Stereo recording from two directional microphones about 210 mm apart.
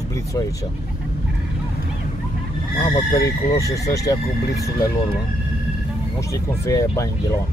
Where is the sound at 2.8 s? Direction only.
20° left (ahead or behind).